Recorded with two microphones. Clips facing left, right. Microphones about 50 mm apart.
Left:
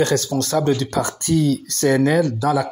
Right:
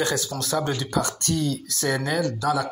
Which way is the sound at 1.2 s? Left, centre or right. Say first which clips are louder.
Left 7 dB; centre.